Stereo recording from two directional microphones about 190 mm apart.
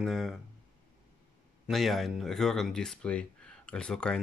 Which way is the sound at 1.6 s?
Centre (ahead or behind).